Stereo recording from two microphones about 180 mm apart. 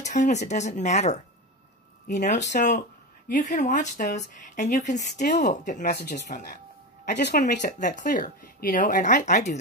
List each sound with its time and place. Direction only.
0.0 s speech: 40° left (ahead or behind); by 6.2 s 60° left (ahead or behind)
6.2 s speech: 45° left (ahead or behind)
7.1 s speech: 65° left (ahead or behind)
7.5 s speech: 45° left (ahead or behind)